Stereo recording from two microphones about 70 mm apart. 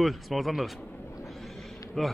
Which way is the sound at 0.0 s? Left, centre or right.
Centre.